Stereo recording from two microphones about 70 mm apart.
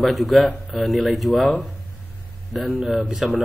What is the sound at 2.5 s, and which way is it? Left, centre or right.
Speech, centre.